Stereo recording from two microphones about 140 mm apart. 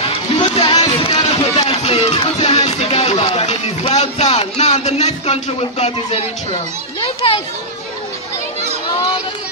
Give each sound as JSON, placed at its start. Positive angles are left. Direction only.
{"t": 0.0, "sound": "music", "side_deg": 35}
{"t": 7.0, "sound": "a child's voice", "side_deg": 40}